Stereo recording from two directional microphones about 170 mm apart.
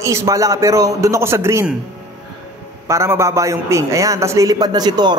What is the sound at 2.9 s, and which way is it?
A man's voice, 15° right (ahead or behind).